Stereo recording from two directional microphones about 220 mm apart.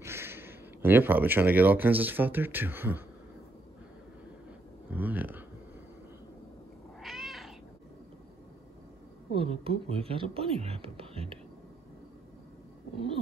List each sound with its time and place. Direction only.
0.0 s speech: 10° right (ahead or behind)
4.9 s a sound: 5° right (ahead or behind)
7.0 s cat: centre (ahead or behind)
9.3 s speech: 25° right (ahead or behind)
12.9 s speech: 25° right (ahead or behind)